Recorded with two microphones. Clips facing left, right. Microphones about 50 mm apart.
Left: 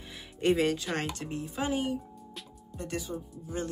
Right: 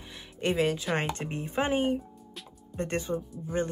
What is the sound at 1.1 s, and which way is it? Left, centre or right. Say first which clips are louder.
Speech: right 4 dB; right.